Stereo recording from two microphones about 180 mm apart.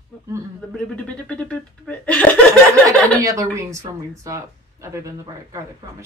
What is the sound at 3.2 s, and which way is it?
Speech, 15° right (ahead or behind).